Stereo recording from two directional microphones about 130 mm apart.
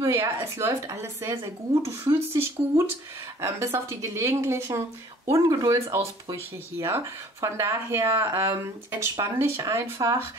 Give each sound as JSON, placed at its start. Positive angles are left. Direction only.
{"t": 0.0, "sound": "speech", "side_deg": -20}